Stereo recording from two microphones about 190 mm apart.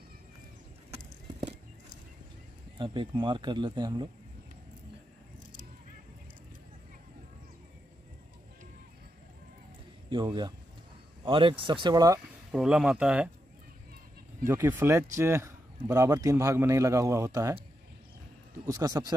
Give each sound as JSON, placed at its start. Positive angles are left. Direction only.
{"t": 2.8, "sound": "speech", "side_deg": -25}
{"t": 10.0, "sound": "speech", "side_deg": -25}
{"t": 12.4, "sound": "speech", "side_deg": -5}
{"t": 14.4, "sound": "speech", "side_deg": -10}
{"t": 18.7, "sound": "speech", "side_deg": -20}